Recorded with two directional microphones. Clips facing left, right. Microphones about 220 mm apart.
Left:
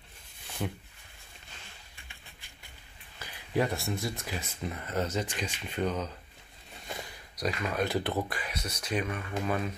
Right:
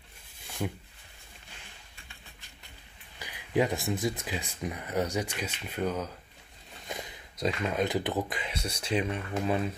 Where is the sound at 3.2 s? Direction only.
15° right (ahead or behind).